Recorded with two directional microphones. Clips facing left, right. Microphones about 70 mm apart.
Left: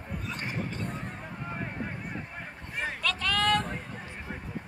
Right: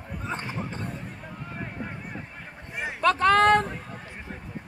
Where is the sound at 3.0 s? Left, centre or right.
Right.